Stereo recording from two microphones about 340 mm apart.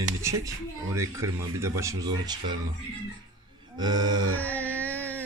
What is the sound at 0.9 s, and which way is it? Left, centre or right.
Speech, centre.